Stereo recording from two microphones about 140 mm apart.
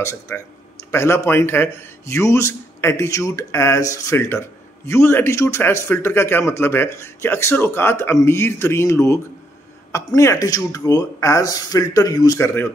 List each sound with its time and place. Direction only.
0.0 s a man's voice: 20° left (ahead or behind)